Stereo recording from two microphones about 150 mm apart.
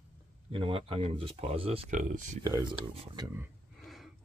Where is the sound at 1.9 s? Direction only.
55° right (ahead or behind).